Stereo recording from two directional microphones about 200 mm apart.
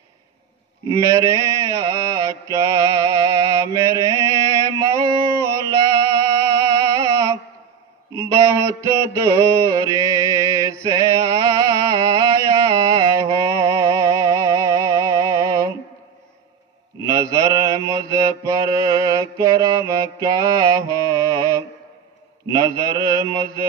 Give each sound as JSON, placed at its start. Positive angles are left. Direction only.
{"t": 0.8, "sound": "mantra", "side_deg": -15}
{"t": 6.4, "sound": "music", "side_deg": -15}
{"t": 8.1, "sound": "mantra", "side_deg": -15}
{"t": 17.0, "sound": "mantra", "side_deg": -15}